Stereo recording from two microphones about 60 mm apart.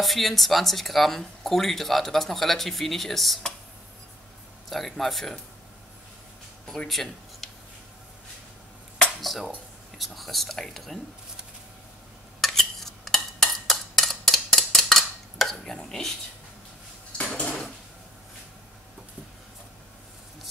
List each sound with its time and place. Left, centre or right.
0.0 s speech: centre
4.6 s speech: centre
6.9 s speech: centre
8.9 s dishes: centre
9.9 s speech: centre
12.4 s a sound: centre
17.2 s dishes: left